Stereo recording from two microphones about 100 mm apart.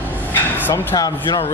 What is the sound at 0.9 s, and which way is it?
Speech, 40° left (ahead or behind).